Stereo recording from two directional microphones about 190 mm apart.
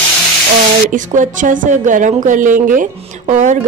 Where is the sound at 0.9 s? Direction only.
45° right (ahead or behind).